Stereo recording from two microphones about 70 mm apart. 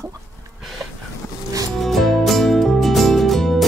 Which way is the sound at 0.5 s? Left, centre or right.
Centre.